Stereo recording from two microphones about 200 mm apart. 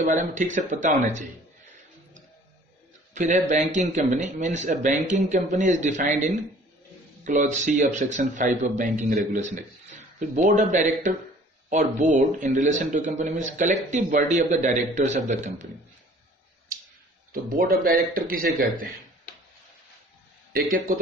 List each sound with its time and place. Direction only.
0.0 s a man's voice: 35° right (ahead or behind)
3.2 s a man's voice: 35° right (ahead or behind)
17.3 s speech: 45° right (ahead or behind)
20.5 s speech: 45° right (ahead or behind)